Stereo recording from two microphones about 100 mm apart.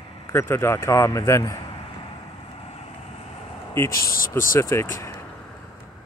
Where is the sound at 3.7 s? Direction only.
25° left (ahead or behind).